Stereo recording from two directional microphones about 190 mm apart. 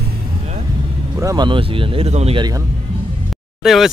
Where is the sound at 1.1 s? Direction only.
20° right (ahead or behind).